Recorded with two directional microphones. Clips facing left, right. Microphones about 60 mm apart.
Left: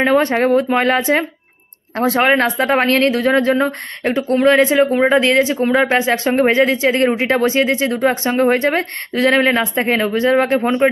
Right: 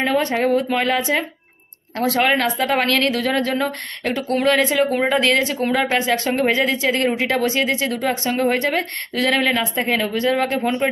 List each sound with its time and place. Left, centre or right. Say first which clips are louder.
0.0 s speech: left 5 dB; left